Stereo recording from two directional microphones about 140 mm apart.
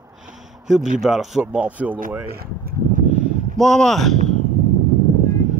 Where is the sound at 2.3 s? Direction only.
90° right.